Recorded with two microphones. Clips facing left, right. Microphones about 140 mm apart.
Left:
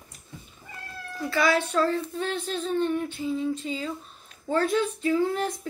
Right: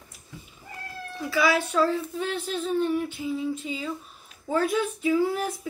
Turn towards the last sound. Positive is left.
turn(degrees=-5)  # may be behind; listen again after turning